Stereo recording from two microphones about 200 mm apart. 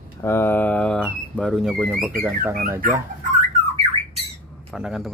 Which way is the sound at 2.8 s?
40° right (ahead or behind).